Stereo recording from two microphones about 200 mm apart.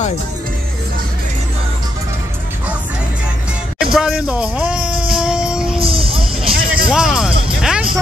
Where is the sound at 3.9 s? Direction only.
5° right (ahead or behind).